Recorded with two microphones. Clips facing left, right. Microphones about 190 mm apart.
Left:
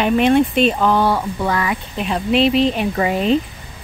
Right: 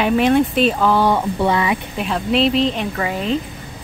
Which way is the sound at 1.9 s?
Centre (ahead or behind).